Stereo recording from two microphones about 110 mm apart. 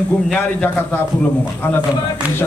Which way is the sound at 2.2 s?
15° right (ahead or behind).